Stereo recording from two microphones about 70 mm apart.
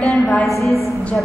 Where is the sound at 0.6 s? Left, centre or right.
Centre.